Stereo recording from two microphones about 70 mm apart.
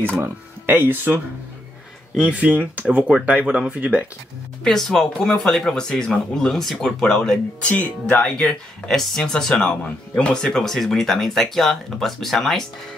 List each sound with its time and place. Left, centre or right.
0.2 s speech: right
2.1 s speech: centre
4.6 s speech: centre
7.6 s speech: left
8.4 s speech: centre